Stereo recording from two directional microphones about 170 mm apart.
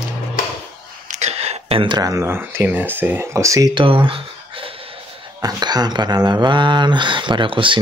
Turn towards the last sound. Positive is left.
turn(degrees=-30)  # may be behind; listen again after turning